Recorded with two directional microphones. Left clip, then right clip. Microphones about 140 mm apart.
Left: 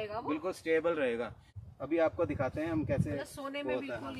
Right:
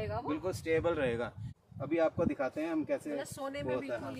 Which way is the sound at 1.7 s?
25° right (ahead or behind).